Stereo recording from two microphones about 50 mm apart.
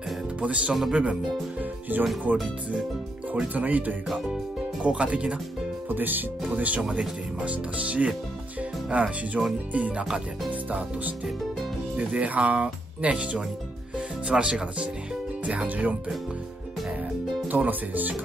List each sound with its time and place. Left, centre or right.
0.4 s speech: right
1.6 s speech: right
3.5 s speech: right
5.9 s speech: right; by 14.9 s centre
15.4 s speech: right
17.5 s speech: right